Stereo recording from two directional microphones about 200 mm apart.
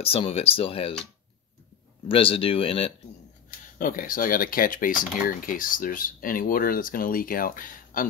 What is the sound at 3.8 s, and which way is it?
Speech, 45° left (ahead or behind).